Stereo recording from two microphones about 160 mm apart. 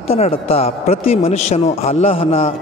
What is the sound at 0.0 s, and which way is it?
A man's voice, 40° left (ahead or behind).